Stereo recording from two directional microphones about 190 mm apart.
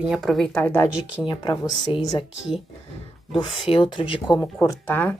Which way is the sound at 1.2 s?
20° left (ahead or behind).